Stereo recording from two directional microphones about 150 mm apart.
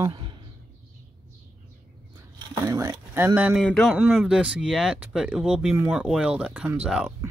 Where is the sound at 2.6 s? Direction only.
20° right (ahead or behind).